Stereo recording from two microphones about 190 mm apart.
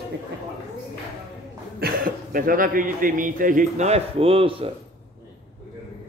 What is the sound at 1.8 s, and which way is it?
A man's voice, 50° right (ahead or behind).